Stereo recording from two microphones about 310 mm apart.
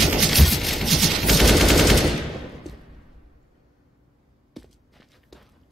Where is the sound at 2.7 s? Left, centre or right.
Centre.